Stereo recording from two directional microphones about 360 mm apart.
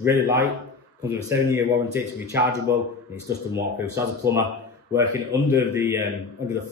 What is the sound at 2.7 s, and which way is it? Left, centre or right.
Speech, centre.